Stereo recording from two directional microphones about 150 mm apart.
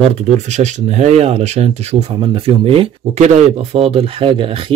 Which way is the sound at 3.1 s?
50° right (ahead or behind).